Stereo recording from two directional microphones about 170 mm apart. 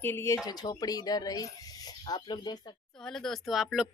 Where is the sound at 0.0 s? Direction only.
15° left (ahead or behind).